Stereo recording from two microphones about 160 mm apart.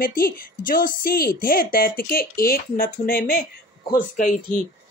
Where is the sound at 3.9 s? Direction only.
55° left (ahead or behind).